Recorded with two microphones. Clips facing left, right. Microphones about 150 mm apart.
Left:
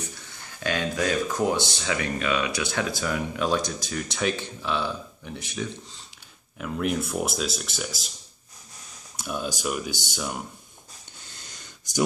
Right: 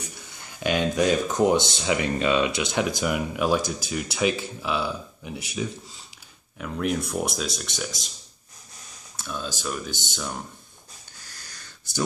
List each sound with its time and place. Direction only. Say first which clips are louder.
0.6 s speech: right 4 dB; 15° right (ahead or behind); by 8.1 s 5° left (ahead or behind)
9.1 s speech: left 3 dB; 15° left (ahead or behind)
11.2 s wheeze: left 1 dB; 20° left (ahead or behind)